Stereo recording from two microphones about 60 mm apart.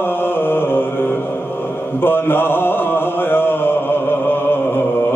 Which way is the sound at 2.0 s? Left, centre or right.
Left.